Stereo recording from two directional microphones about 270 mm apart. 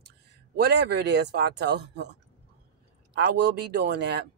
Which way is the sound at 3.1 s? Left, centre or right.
Right.